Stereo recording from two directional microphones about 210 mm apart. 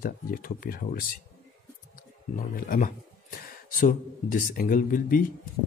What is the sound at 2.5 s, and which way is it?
Speech, 40° left (ahead or behind).